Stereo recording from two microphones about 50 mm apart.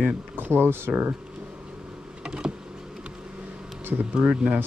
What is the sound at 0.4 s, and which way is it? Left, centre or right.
Speech, right.